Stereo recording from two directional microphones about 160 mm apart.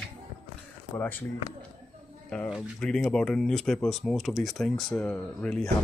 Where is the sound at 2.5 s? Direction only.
Centre (ahead or behind).